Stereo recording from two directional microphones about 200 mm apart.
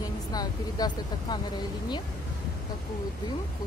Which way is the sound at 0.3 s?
20° left (ahead or behind).